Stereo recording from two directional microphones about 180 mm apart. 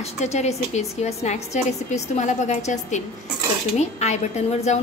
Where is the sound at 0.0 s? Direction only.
40° left (ahead or behind).